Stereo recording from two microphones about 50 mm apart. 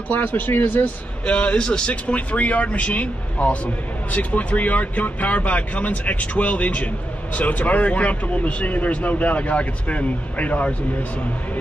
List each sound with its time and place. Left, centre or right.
0.1 s speech: left
1.2 s a man's voice: left